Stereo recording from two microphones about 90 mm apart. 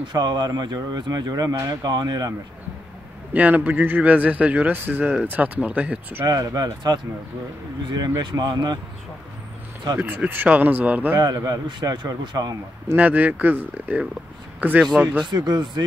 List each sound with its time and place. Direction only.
0.1 s speech: 50° right (ahead or behind)
3.3 s a man's voice: 20° right (ahead or behind)
6.2 s speech: 45° right (ahead or behind)
9.9 s speech: 20° right (ahead or behind)
11.1 s speech: 45° right (ahead or behind)
12.8 s a man's voice: 20° right (ahead or behind)
15.2 s speech: 50° right (ahead or behind)